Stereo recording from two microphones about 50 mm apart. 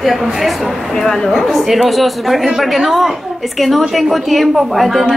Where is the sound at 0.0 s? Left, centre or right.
Centre.